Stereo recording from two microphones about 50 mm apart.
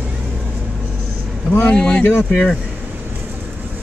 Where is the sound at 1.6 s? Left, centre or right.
Left.